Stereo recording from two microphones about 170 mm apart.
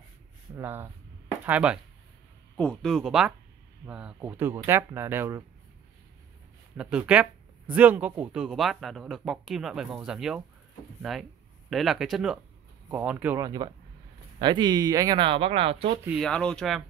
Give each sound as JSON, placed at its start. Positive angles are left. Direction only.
{"t": 0.6, "sound": "speech", "side_deg": -15}
{"t": 2.5, "sound": "speech", "side_deg": 5}
{"t": 6.8, "sound": "speech", "side_deg": -5}
{"t": 16.1, "sound": "speech", "side_deg": 5}